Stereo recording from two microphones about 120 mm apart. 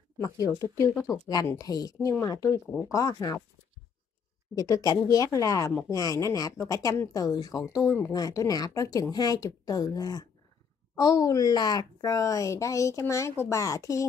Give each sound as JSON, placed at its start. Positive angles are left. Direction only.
{"t": 0.2, "sound": "speech", "side_deg": 30}
{"t": 0.7, "sound": "speech", "side_deg": 20}
{"t": 1.6, "sound": "a woman's voice", "side_deg": 30}
{"t": 4.6, "sound": "a woman's voice", "side_deg": 30}